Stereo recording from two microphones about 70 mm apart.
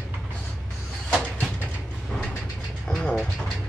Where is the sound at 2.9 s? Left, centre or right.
Centre.